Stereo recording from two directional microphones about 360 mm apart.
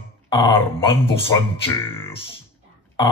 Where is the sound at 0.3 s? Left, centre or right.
Centre.